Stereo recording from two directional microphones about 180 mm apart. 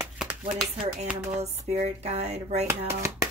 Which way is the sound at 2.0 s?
40° right (ahead or behind).